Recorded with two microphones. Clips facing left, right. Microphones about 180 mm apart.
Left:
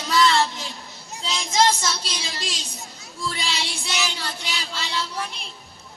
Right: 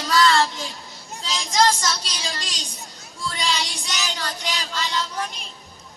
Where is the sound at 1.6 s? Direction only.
25° left (ahead or behind).